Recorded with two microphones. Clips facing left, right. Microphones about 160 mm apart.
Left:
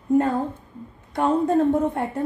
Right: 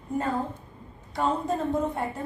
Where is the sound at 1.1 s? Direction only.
55° left (ahead or behind).